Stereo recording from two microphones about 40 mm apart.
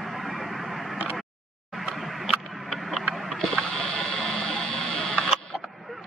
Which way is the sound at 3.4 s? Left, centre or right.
Centre.